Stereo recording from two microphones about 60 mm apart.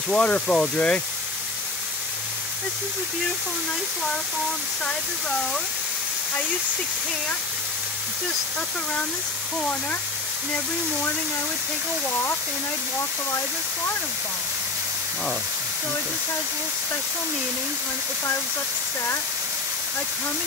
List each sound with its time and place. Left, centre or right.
0.1 s speech: left
9.6 s speech: left